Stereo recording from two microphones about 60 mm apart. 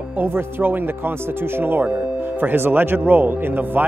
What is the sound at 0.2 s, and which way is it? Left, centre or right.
Speech, right.